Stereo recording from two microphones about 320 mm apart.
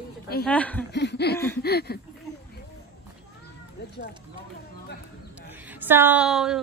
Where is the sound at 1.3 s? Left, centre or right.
Centre.